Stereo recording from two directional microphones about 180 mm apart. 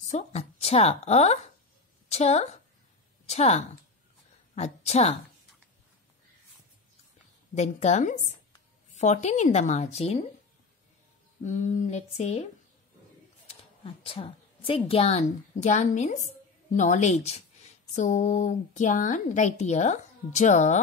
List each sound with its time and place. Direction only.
0.1 s a woman's voice: 35° left (ahead or behind)
7.5 s speech: 40° left (ahead or behind)
11.4 s speech: 40° left (ahead or behind)
13.5 s typing: 30° left (ahead or behind)
14.9 s speech: 35° left (ahead or behind)